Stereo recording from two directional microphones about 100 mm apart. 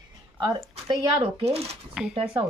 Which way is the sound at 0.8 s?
70° right (ahead or behind).